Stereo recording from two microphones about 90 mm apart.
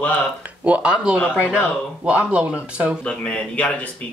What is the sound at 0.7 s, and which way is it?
Speech, 15° right (ahead or behind).